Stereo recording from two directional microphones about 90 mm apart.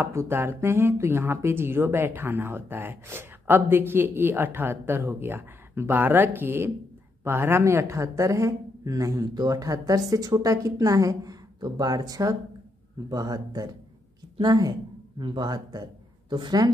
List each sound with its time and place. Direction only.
0.0 s a woman's voice: 30° right (ahead or behind); by 16.3 s 45° right (ahead or behind)